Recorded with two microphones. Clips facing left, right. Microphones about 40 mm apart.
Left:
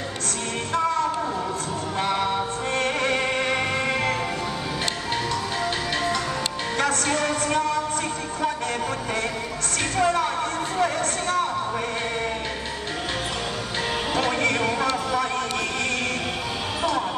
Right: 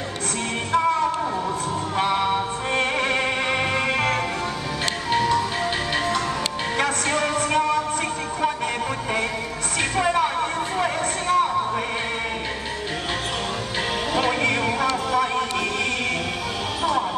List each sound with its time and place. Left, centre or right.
2.0 s music: centre
5.1 s music: centre
6.8 s music: centre
9.9 s music: centre
10.8 s a sound: centre
14.1 s music: centre